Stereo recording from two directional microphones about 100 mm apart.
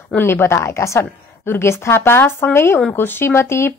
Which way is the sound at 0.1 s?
20° left (ahead or behind).